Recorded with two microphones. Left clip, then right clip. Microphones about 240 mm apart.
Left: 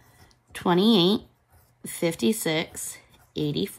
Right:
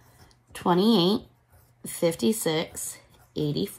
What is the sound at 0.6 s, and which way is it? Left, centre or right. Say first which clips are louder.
Speech: left 1 dB; centre.